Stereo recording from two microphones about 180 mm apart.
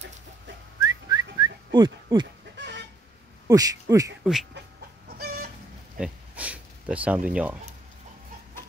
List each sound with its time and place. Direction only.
1.0 s whistling: 20° right (ahead or behind)
2.5 s chicken: 80° right
3.4 s speech: 20° right (ahead or behind)
4.2 s speech: centre (ahead or behind)
4.6 s chicken: 60° right (ahead or behind)
5.9 s a sound: 5° right (ahead or behind)